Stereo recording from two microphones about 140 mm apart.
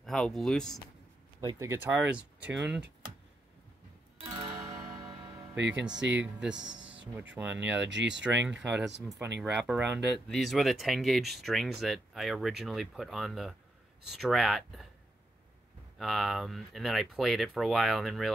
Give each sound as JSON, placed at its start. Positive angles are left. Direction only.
{"t": 0.0, "sound": "speech", "side_deg": 0}
{"t": 1.6, "sound": "speech", "side_deg": -20}
{"t": 4.3, "sound": "music", "side_deg": -35}
{"t": 5.9, "sound": "speech", "side_deg": -5}
{"t": 16.0, "sound": "speech", "side_deg": 0}